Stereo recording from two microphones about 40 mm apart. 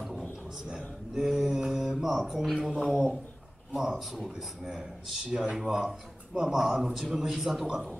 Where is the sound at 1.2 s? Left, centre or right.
Centre.